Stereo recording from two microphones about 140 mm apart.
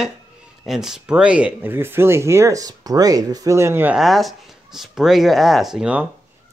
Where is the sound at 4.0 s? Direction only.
Centre (ahead or behind).